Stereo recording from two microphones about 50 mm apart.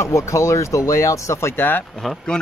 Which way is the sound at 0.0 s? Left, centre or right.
Left.